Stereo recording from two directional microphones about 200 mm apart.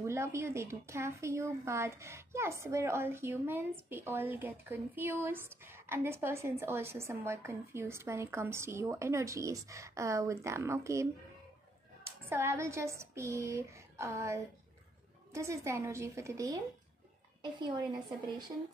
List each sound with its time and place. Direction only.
0.0 s a woman's voice: 15° right (ahead or behind)
12.3 s a woman's voice: 10° right (ahead or behind)